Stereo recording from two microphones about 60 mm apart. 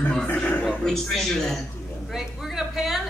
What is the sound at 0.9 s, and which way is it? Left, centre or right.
Speech, centre.